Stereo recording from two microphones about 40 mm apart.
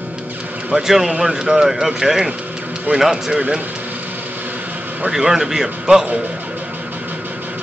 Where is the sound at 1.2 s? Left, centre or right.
Centre.